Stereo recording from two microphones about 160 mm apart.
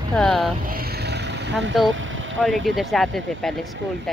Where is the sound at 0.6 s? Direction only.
65° right (ahead or behind); by 1.5 s 90° right.